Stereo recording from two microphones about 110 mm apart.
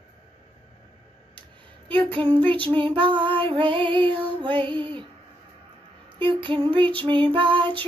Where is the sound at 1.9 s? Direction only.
50° right (ahead or behind).